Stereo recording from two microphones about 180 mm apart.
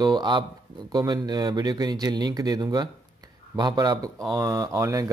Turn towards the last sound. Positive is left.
turn(degrees=-20)  # may be behind; listen again after turning